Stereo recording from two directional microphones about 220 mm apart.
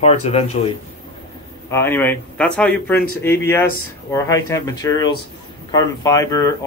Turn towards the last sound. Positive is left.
turn(degrees=15)  # may be behind; listen again after turning